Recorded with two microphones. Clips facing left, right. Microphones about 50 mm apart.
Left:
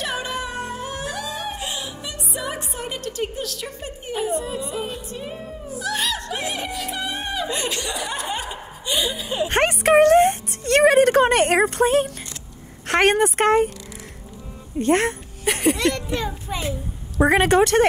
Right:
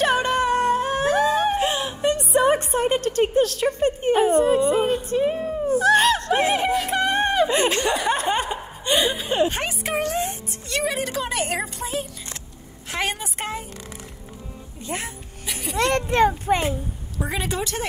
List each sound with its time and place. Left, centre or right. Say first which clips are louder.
0.0 s singing: right 7 dB; right
7.4 s laughter: right 6 dB; right
9.5 s music: left 9 dB; left
12.8 s speech: left 10 dB; left
14.8 s a sound: left 12 dB; left
15.8 s a child's voice: right 4 dB; right
17.2 s a woman's voice: left 11 dB; left